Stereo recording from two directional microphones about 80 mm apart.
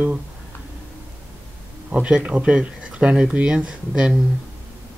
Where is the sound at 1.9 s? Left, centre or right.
Centre.